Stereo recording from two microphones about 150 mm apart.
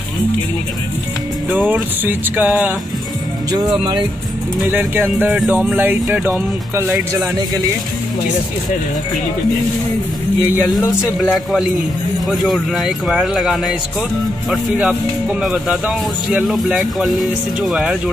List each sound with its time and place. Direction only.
1.7 s speech: 10° right (ahead or behind)
4.6 s speech: 15° right (ahead or behind)
11.0 s speech: centre (ahead or behind)